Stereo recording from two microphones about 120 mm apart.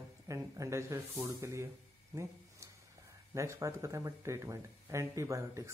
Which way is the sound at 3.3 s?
25° right (ahead or behind).